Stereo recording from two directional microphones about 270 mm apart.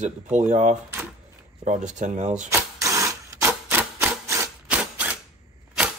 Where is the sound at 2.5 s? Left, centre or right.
Centre.